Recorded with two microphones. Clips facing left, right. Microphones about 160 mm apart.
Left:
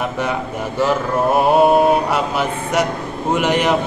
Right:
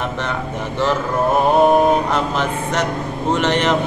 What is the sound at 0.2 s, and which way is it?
Speech, 10° left (ahead or behind).